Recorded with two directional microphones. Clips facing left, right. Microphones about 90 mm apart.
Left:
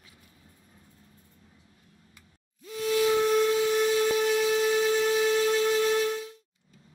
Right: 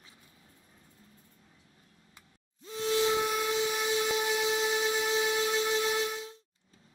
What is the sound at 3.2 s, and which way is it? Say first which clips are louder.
Train: left 7 dB; 10° right (ahead or behind).